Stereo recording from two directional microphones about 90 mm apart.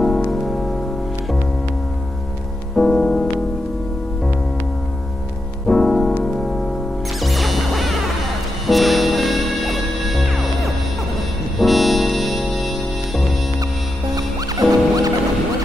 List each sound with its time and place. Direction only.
0.0 s music: 5° left (ahead or behind)
2.7 s music: 5° left (ahead or behind)
5.7 s music: 5° left (ahead or behind)
14.1 s music: 45° right (ahead or behind)